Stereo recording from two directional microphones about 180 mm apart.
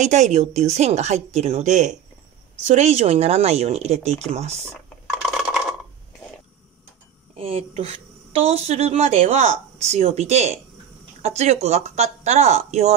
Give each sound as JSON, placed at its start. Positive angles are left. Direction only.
{"t": 0.0, "sound": "speech", "side_deg": -40}
{"t": 5.3, "sound": "a sound", "side_deg": 0}
{"t": 7.3, "sound": "speech", "side_deg": -35}